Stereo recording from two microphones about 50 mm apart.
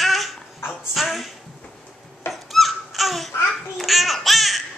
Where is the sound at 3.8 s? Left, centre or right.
Centre.